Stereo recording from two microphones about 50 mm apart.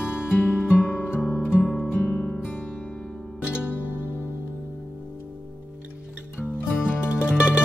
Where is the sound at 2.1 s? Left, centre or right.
Left.